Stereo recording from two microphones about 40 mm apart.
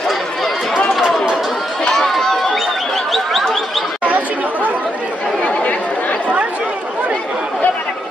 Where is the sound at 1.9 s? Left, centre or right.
Centre.